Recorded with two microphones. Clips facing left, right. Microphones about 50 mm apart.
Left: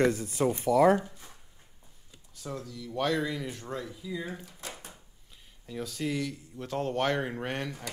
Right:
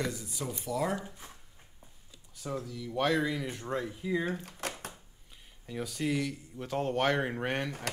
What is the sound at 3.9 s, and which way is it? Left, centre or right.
Speech, right.